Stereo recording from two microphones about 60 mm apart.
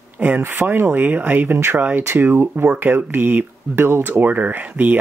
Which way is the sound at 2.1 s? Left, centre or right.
Right.